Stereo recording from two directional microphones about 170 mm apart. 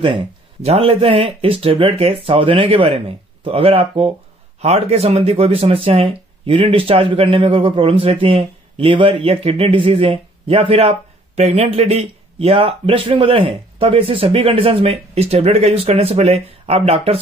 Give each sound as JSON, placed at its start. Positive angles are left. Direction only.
{"t": 0.0, "sound": "speech", "side_deg": -30}